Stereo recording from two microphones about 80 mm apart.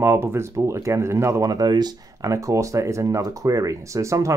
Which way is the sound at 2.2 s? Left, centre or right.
Right.